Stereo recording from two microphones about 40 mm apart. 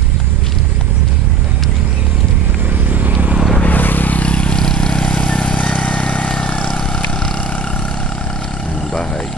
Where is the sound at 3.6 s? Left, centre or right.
Left; by 8.6 s centre.